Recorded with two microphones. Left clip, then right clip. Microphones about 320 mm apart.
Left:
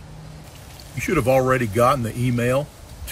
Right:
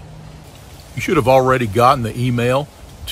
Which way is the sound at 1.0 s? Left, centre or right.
Centre.